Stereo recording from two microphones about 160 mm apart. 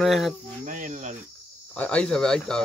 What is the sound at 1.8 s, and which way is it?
Speech, 5° left (ahead or behind).